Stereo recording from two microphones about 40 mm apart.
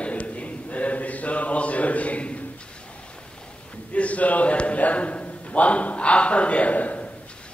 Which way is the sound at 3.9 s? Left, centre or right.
Left.